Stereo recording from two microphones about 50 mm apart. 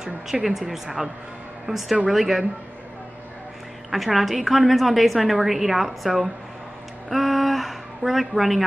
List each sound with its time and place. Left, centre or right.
0.0 s speech: centre
1.7 s a woman's voice: right
2.0 s a woman's voice: centre
3.9 s a woman's voice: centre